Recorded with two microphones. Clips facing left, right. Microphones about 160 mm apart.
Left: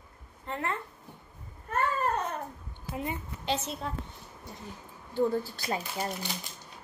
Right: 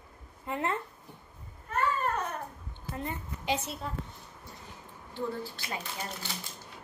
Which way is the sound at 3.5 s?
5° right (ahead or behind).